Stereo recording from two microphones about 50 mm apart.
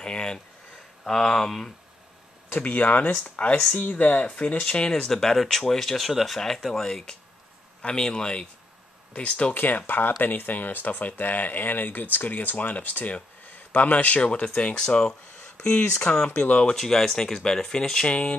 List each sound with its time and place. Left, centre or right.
0.0 s speech: centre
2.6 s speech: left
5.1 s speech: centre; by 9.5 s left
9.5 s speech: left; by 16.0 s centre
16.4 s speech: left
16.7 s speech: centre